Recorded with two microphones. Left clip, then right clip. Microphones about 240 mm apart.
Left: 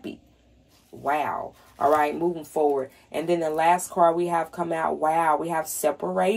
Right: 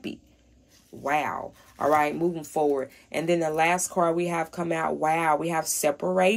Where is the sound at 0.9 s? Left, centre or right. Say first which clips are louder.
Even; right.